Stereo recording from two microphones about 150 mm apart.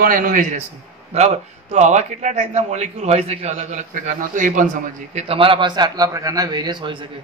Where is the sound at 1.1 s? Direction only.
45° right (ahead or behind).